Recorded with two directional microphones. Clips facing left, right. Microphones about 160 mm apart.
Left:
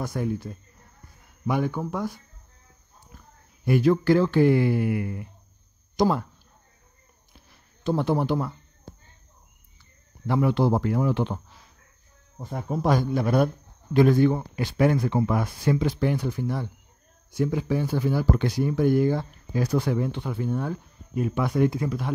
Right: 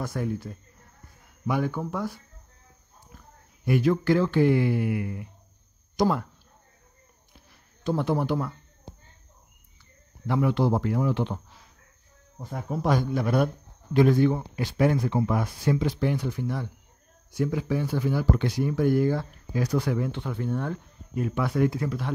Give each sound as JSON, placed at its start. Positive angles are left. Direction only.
{"t": 0.0, "sound": "speech", "side_deg": 15}
{"t": 1.5, "sound": "speech", "side_deg": 20}
{"t": 3.6, "sound": "speech", "side_deg": 35}
{"t": 6.0, "sound": "speech", "side_deg": 25}
{"t": 7.8, "sound": "speech", "side_deg": 30}
{"t": 10.2, "sound": "speech", "side_deg": 35}
{"t": 12.4, "sound": "speech", "side_deg": 25}
{"t": 12.8, "sound": "speech", "side_deg": 35}
{"t": 13.9, "sound": "speech", "side_deg": 50}
{"t": 16.3, "sound": "speech", "side_deg": 35}
{"t": 18.7, "sound": "speech", "side_deg": 25}
{"t": 20.1, "sound": "speech", "side_deg": 10}